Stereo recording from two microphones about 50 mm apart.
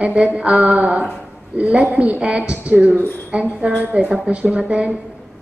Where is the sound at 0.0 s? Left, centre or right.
Right.